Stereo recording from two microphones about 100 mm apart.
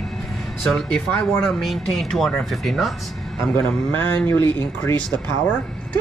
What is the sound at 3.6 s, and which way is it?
Speech, 20° left (ahead or behind).